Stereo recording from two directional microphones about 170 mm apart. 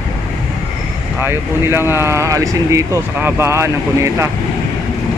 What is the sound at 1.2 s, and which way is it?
Speech, 15° right (ahead or behind).